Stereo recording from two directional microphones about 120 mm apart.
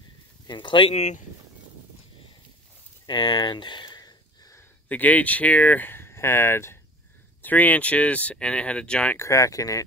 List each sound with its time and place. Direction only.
0.5 s speech: 40° left (ahead or behind)
0.9 s speech: 75° left (ahead or behind)
3.1 s a sound: 40° left (ahead or behind)
4.8 s speech: 15° left (ahead or behind)
9.1 s speech: 25° left (ahead or behind)